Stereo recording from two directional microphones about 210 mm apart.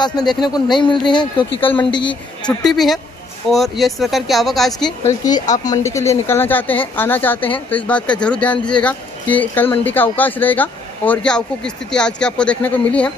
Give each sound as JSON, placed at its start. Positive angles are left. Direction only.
{"t": 0.0, "sound": "speech", "side_deg": 20}
{"t": 2.4, "sound": "speech", "side_deg": 0}
{"t": 4.8, "sound": "speech", "side_deg": 15}